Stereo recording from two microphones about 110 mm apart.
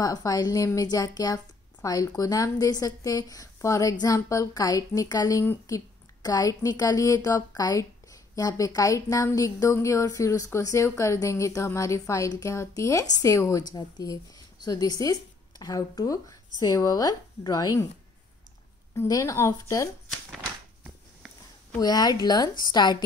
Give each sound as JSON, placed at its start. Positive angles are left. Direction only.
{"t": 0.0, "sound": "a woman's voice", "side_deg": 35}
{"t": 19.0, "sound": "speech", "side_deg": 30}
{"t": 21.7, "sound": "a woman's voice", "side_deg": 40}